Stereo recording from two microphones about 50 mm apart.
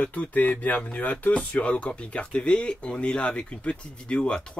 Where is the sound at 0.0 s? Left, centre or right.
Left.